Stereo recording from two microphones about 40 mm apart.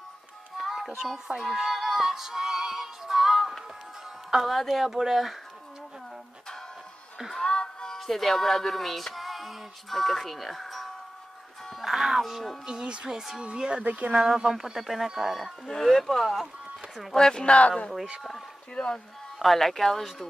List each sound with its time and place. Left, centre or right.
0.6 s music: centre
4.5 s speech: centre
7.3 s music: centre
8.0 s music: centre
12.6 s speech: right
13.8 s speech: right
14.1 s speech: centre
15.6 s speech: centre
17.1 s speech: centre
17.5 s speech: left
18.8 s speech: centre